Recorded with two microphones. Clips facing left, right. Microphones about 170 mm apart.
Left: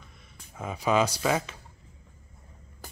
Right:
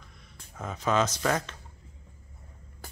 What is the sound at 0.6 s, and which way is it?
Speech, 10° left (ahead or behind).